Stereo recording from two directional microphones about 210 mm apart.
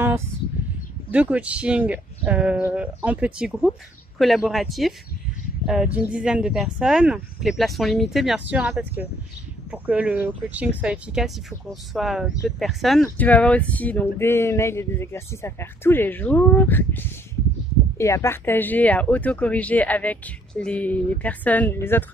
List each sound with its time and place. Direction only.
1.1 s speech: 5° right (ahead or behind); by 22.0 s 10° left (ahead or behind)